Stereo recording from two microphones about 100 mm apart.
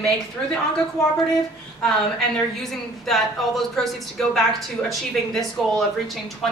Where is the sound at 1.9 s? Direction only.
5° left (ahead or behind).